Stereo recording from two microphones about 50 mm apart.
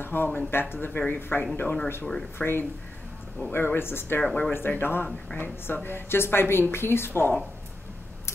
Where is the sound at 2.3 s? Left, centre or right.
Left.